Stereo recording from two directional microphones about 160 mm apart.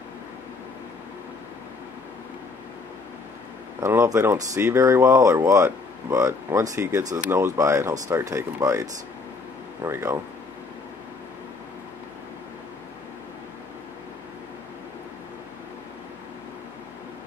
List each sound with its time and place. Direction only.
3.8 s speech: 15° right (ahead or behind)
9.8 s speech: 15° right (ahead or behind)